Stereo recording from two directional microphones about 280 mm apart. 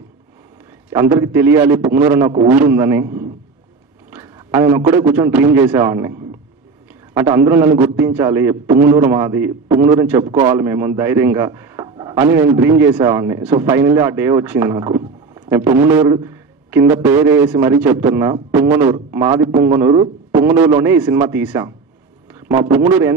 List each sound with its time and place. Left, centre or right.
0.8 s speech: centre
4.1 s a sound: centre
4.6 s speech: centre
7.2 s a man's voice: centre
20.4 s speech: centre